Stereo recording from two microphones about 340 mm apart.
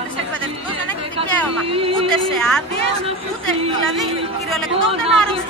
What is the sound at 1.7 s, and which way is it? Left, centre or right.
Speech, centre.